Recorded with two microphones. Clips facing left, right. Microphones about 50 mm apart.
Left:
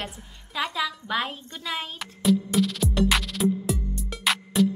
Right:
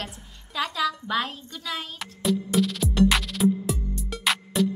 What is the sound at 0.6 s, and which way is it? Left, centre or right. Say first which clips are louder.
Speech: right 2 dB; centre.